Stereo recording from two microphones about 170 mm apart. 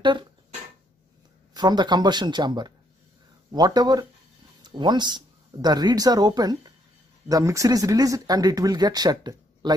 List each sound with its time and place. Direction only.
1.5 s speech: 25° right (ahead or behind)